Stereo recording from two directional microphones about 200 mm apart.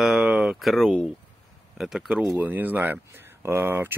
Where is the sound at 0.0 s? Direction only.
5° right (ahead or behind).